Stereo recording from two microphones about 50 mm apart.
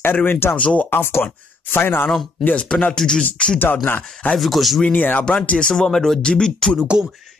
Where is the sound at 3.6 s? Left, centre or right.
Left.